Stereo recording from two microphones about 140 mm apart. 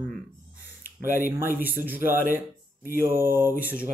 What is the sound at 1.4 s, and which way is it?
Speech, 15° right (ahead or behind).